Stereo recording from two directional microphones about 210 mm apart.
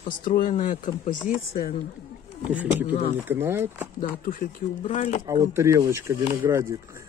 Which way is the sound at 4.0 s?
40° left (ahead or behind).